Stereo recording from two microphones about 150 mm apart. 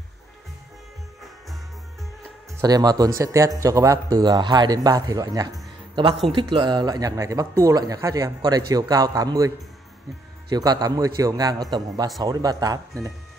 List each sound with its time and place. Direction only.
2.6 s speech: 25° right (ahead or behind)
10.5 s speech: 25° right (ahead or behind)